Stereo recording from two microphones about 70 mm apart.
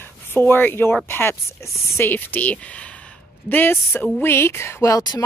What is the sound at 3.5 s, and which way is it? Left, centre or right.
Speech, left.